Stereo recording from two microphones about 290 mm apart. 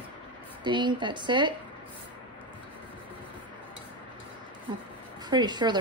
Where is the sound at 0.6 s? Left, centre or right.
Centre.